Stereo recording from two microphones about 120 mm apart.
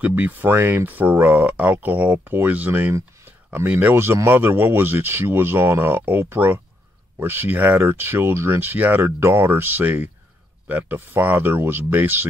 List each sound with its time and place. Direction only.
0.0 s speech: 15° right (ahead or behind)